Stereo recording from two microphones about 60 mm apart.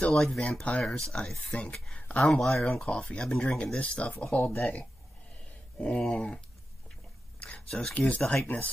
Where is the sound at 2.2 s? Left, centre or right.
Centre.